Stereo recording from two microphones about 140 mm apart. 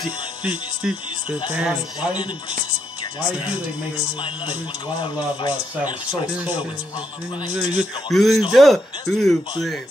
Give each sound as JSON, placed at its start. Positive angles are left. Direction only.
{"t": 0.4, "sound": "speech", "side_deg": -10}
{"t": 5.0, "sound": "speech", "side_deg": 35}
{"t": 7.5, "sound": "speech", "side_deg": 0}